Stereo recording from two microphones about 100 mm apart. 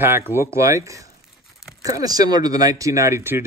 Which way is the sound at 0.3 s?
30° right (ahead or behind).